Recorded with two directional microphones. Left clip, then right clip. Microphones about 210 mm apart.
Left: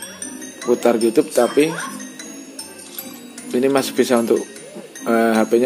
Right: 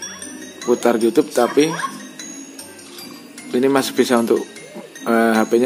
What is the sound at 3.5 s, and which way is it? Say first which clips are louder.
Speech: right 1 dB; centre (ahead or behind).